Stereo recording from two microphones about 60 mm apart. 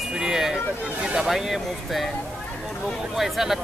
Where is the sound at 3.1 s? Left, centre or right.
Centre.